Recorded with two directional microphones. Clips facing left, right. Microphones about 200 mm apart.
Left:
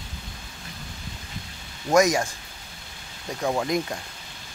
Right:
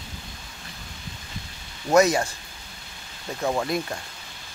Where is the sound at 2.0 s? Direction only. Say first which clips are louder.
Right 1 dB; 15° left (ahead or behind).